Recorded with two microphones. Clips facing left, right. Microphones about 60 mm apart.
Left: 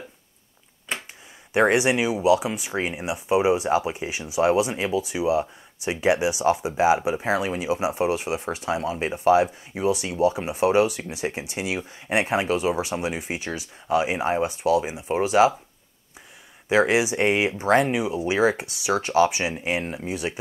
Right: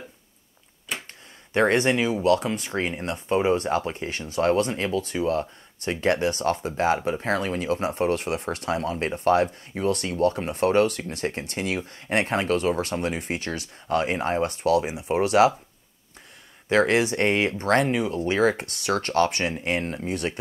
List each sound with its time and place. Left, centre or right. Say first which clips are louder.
1.5 s speech: left 1 dB; centre
16.6 s speech: left 1 dB; centre